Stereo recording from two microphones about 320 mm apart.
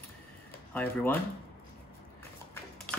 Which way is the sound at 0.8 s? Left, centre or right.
Centre.